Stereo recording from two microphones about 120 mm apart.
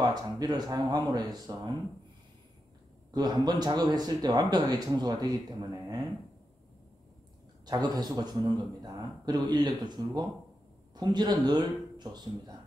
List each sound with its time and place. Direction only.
0.0 s speech: 35° right (ahead or behind)
3.1 s speech: 35° right (ahead or behind)
7.6 s speech: 35° right (ahead or behind)